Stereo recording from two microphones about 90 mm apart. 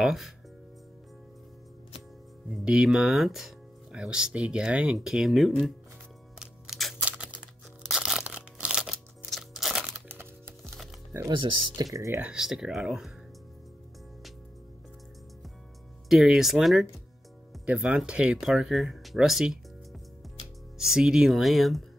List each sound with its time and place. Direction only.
0.0 s speech: 5° right (ahead or behind)
2.5 s speech: 5° right (ahead or behind)
6.4 s music: centre (ahead or behind)
7.0 s crumpling: 15° right (ahead or behind)
7.9 s a sound: 5° right (ahead or behind)
9.3 s crunch: 5° right (ahead or behind)
9.8 s crumpling: 25° right (ahead or behind)
11.1 s speech: 25° right (ahead or behind)
11.7 s speech: 40° right (ahead or behind)
12.2 s speech: 10° right (ahead or behind)
16.1 s speech: 5° right (ahead or behind)
20.7 s speech: 5° right (ahead or behind)